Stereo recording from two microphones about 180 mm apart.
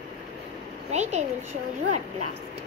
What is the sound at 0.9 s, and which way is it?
Speech, 40° right (ahead or behind).